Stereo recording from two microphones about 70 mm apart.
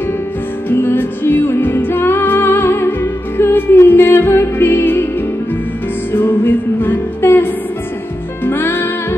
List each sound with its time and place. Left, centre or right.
0.7 s music: left
6.1 s music: left
8.5 s music: left